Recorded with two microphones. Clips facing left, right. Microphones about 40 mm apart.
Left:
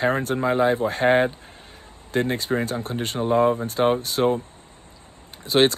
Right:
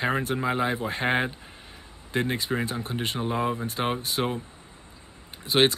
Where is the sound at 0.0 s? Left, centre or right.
Centre.